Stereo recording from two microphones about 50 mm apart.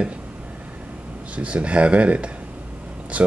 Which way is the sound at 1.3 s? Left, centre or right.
Right.